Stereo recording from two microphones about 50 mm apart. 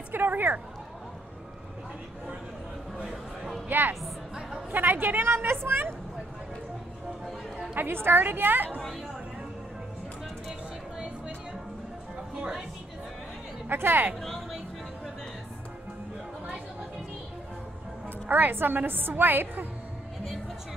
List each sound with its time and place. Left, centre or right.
0.1 s a sound: right
3.0 s a sound: centre
3.6 s speech: right
4.4 s a sound: centre
4.7 s a woman's voice: right
7.7 s a woman's voice: right
12.4 s a woman's voice: centre
13.7 s a woman's voice: right
14.2 s music: centre
18.3 s a woman's voice: right